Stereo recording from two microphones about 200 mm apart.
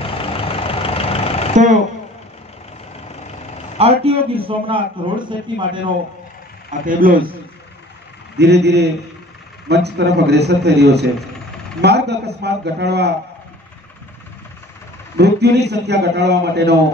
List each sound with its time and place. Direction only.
0.0 s vehicle: 25° left (ahead or behind)
1.5 s a sound: 40° right (ahead or behind)
3.7 s a man's voice: 30° right (ahead or behind)
6.9 s a man's voice: 45° right (ahead or behind)
8.4 s a man's voice: 55° right (ahead or behind)
15.1 s a man's voice: 55° right (ahead or behind)